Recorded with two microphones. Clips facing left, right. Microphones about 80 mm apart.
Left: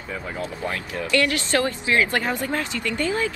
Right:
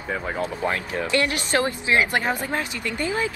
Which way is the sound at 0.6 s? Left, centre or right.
Right.